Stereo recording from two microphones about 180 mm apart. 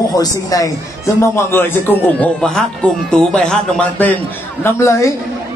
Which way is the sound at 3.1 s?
5° left (ahead or behind).